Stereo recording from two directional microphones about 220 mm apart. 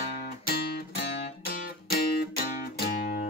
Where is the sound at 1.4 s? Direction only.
45° left (ahead or behind).